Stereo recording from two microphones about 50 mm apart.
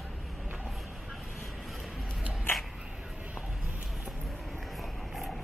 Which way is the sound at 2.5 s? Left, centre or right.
Left.